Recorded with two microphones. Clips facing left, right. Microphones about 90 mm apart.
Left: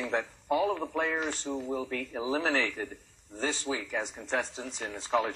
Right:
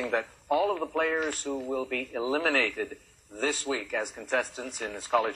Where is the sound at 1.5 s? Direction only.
10° right (ahead or behind).